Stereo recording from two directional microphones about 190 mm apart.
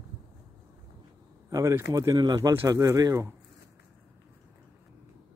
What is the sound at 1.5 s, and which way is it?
Speech, 15° right (ahead or behind).